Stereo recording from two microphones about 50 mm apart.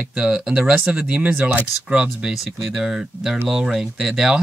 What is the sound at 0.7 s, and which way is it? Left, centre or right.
Speech, right.